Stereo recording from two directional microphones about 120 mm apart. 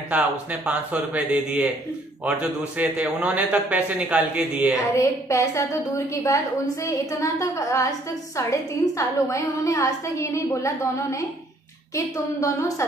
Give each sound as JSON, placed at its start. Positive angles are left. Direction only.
{"t": 0.1, "sound": "a man's voice", "side_deg": -10}
{"t": 4.9, "sound": "a woman's voice", "side_deg": 25}